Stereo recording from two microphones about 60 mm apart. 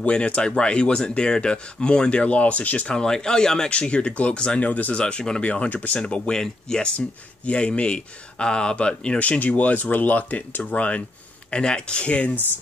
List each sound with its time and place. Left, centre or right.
0.0 s speech: left
3.0 s speech: centre
4.9 s speech: centre